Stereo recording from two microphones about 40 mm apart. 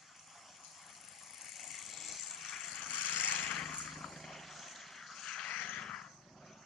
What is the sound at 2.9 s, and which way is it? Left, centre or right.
Vehicle, left.